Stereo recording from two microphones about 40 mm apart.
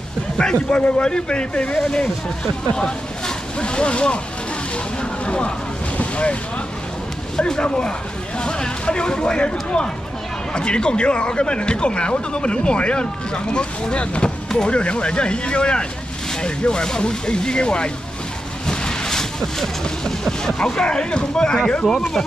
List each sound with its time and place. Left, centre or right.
0.4 s speech: left
1.8 s speech: centre
5.2 s speech: left
5.9 s boat: left
7.3 s speech: centre